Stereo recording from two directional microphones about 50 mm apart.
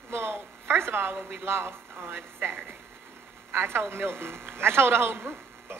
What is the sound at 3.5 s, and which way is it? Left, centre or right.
Speech, right.